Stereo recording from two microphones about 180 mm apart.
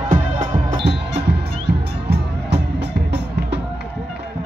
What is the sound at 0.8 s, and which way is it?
Music, 70° right (ahead or behind).